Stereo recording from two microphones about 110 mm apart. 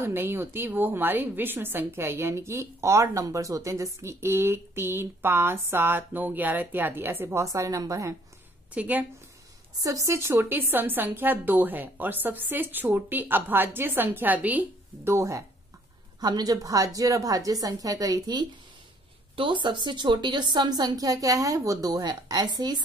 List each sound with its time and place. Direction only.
0.0 s a woman's voice: 20° right (ahead or behind)
8.7 s speech: 15° right (ahead or behind)
9.8 s speech: 30° right (ahead or behind)
16.2 s a woman's voice: 40° right (ahead or behind)